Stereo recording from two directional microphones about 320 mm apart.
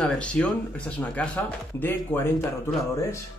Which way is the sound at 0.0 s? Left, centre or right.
Centre.